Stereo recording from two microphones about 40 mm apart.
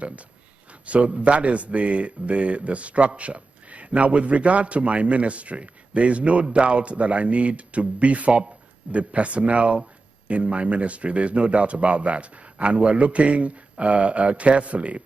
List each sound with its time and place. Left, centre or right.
0.8 s a man's voice: right